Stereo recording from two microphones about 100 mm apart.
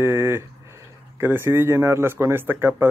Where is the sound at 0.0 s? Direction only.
25° right (ahead or behind).